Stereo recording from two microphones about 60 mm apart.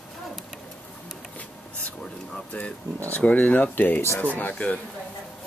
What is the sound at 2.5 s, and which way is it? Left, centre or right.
Speech, left.